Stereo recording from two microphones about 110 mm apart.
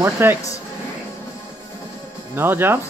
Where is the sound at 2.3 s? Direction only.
20° right (ahead or behind).